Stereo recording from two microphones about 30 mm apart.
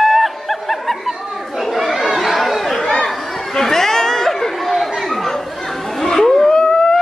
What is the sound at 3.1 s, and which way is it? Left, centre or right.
Chatter, centre.